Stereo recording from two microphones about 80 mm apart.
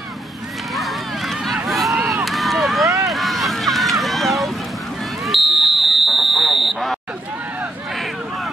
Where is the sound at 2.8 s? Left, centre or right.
Right.